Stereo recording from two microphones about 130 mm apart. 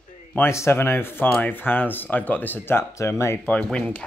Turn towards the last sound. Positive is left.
turn(degrees=5)  # may be behind; listen again after turning